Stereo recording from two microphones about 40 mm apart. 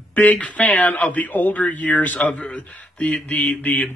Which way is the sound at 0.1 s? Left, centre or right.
Left.